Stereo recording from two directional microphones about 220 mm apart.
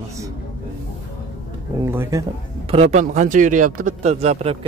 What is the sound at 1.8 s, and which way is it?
Speech, 10° right (ahead or behind).